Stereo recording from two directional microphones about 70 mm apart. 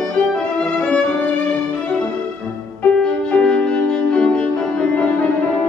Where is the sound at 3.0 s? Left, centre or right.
Centre.